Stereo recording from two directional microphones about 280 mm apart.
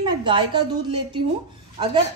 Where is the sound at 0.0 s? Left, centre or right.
Centre.